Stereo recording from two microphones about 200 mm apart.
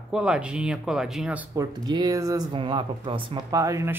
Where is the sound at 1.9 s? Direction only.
20° right (ahead or behind).